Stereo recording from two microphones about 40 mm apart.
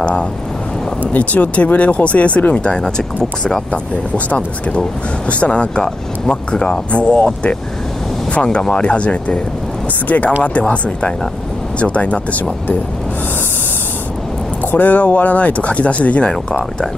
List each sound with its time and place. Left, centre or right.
0.0 s vehicle: left
1.0 s speech: left
5.3 s speech: left
10.0 s speech: left
10.7 s speech: left
14.6 s speech: left
16.3 s speech: left